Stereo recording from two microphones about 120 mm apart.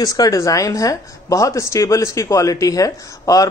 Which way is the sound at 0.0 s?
30° left (ahead or behind).